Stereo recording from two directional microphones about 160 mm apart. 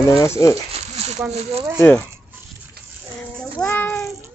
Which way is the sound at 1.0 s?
40° right (ahead or behind).